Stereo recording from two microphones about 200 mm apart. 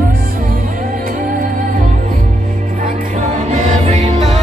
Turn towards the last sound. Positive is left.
turn(degrees=-30)  # may be behind; listen again after turning